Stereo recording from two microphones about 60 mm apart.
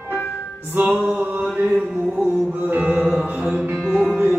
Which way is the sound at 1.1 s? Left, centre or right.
Centre.